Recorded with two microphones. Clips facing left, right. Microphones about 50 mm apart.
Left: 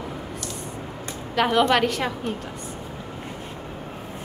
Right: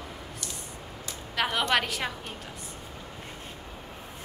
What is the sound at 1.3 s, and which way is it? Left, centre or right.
A woman's voice, centre.